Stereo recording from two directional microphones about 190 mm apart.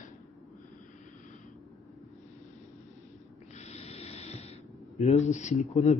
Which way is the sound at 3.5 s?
35° left (ahead or behind).